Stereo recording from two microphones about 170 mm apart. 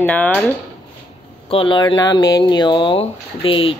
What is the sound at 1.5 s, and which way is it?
Speech, 30° left (ahead or behind).